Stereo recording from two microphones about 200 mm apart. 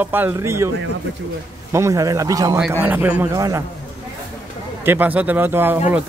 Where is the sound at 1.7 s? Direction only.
15° right (ahead or behind).